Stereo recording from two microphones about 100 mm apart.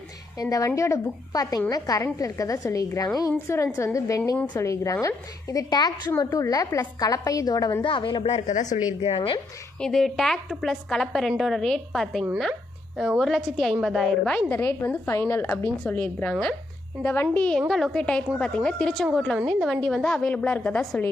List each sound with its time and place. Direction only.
0.4 s a woman's voice: 35° left (ahead or behind)
6.0 s a woman's voice: 30° left (ahead or behind)
7.8 s speech: 55° left (ahead or behind)
9.0 s a woman's voice: 70° left (ahead or behind)
9.8 s a woman's voice: 5° left (ahead or behind)
14.5 s a woman's voice: 20° left (ahead or behind)